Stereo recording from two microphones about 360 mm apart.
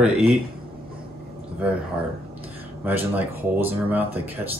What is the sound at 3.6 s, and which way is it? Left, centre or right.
Speech, centre.